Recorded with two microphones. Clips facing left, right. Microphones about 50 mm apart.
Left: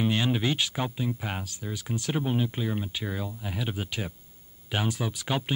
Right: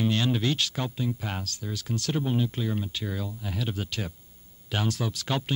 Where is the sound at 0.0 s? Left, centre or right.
Centre.